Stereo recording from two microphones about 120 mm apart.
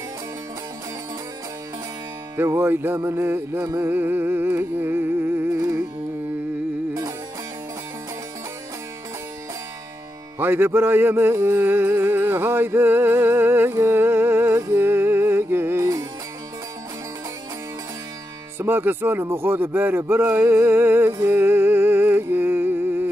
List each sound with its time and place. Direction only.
2.3 s music: 20° right (ahead or behind)
10.4 s music: 20° right (ahead or behind)
18.6 s speech: 20° right (ahead or behind)